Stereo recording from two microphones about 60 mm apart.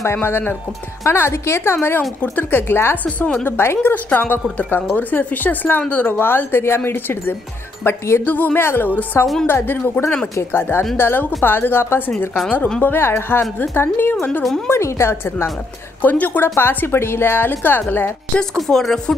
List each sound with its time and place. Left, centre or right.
0.0 s a woman's voice: left
3.9 s a woman's voice: left
14.7 s a woman's voice: left
16.0 s speech: left
16.5 s speech: left
18.3 s speech: centre